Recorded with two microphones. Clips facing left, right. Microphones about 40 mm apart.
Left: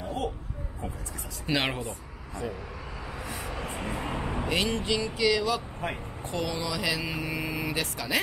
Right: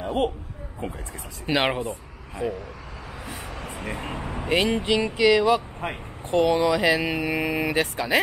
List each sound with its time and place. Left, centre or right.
0.0 s a sound: right
1.4 s speech: right
2.4 s speech: right
3.3 s vehicle: centre
4.0 s speech: centre
4.4 s speech: right
5.5 s speech: right
7.0 s speech: right